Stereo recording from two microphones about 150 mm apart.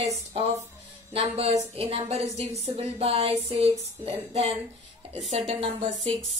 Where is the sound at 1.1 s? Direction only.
40° right (ahead or behind).